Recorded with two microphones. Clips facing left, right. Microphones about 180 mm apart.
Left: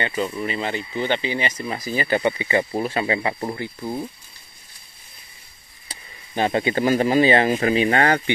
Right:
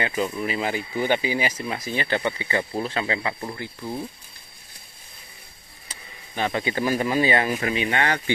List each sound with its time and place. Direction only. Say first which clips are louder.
0.0 s speech: left 1 dB; 5° right (ahead or behind)
3.2 s speech: left 4 dB; 30° left (ahead or behind)
6.3 s speech: left 5 dB; 30° left (ahead or behind)